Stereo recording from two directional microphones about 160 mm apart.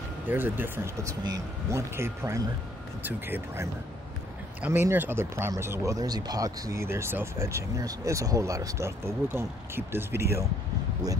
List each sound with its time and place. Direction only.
0.3 s speech: 10° right (ahead or behind)